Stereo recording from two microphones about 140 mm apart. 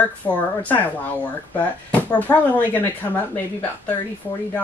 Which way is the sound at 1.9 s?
10° left (ahead or behind).